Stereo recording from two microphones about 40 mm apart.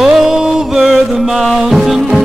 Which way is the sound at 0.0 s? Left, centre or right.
Centre.